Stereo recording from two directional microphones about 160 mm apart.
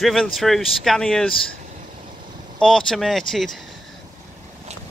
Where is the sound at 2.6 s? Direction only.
5° left (ahead or behind).